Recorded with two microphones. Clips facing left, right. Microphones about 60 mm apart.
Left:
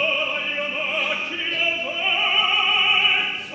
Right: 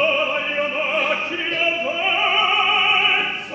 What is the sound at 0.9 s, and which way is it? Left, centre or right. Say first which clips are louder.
Opera: right 4 dB; centre.